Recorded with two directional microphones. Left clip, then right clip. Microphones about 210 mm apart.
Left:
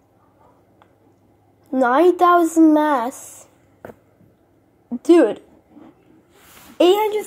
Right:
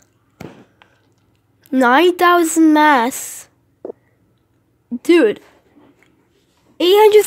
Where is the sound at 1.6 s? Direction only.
45° right (ahead or behind).